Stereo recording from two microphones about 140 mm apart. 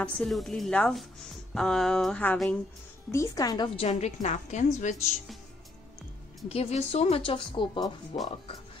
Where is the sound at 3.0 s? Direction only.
25° left (ahead or behind); by 4.9 s 55° left (ahead or behind).